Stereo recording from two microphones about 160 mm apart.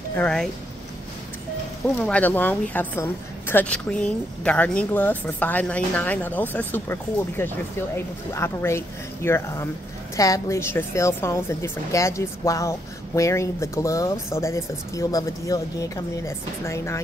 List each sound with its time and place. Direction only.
0.1 s speech: 5° left (ahead or behind)
2.0 s a woman's voice: 10° left (ahead or behind)